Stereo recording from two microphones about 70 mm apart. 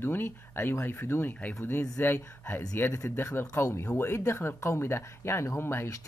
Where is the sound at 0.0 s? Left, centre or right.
Left.